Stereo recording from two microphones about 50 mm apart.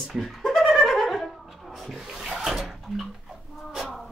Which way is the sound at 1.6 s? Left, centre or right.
Centre.